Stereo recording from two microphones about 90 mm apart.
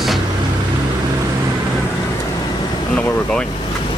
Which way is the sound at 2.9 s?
10° left (ahead or behind).